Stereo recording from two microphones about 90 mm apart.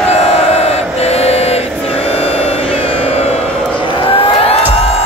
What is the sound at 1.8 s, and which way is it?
Music, 90° left.